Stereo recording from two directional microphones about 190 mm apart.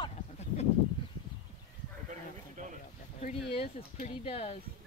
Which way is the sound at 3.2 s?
30° left (ahead or behind).